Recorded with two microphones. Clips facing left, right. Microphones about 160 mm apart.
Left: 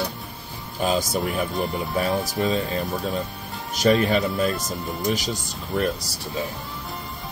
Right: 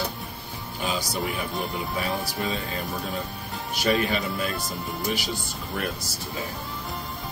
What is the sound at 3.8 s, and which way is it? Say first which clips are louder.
Speech: left 5 dB; 40° left (ahead or behind).